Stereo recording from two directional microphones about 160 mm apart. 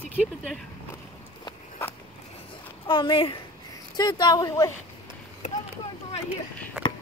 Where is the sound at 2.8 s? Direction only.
30° left (ahead or behind).